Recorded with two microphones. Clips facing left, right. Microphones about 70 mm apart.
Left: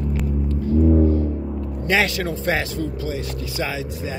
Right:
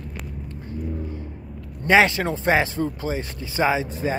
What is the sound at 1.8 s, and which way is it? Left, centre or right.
Speech, right.